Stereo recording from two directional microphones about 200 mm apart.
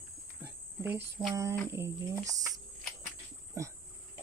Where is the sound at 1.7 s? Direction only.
15° right (ahead or behind).